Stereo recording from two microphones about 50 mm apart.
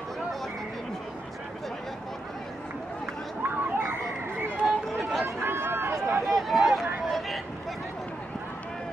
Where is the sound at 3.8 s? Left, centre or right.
Right.